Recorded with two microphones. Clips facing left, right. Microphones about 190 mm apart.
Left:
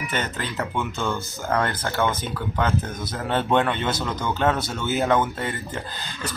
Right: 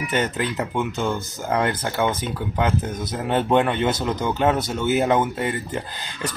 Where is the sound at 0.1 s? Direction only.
15° right (ahead or behind).